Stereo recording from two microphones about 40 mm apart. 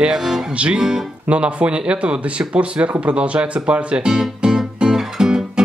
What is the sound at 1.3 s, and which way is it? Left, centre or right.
Speech, right.